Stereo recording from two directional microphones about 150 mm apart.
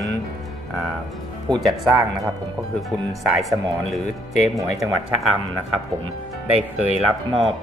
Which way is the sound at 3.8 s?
Centre (ahead or behind).